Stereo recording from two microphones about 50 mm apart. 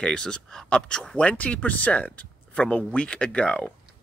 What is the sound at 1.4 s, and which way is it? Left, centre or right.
Speech, left.